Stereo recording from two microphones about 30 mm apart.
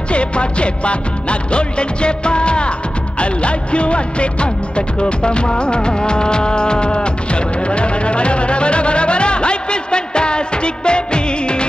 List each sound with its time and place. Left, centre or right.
0.1 s music: left